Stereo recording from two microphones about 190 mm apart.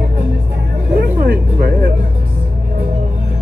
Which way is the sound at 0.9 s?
50° right (ahead or behind).